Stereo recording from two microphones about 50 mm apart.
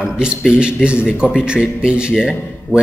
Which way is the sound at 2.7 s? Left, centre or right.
Right.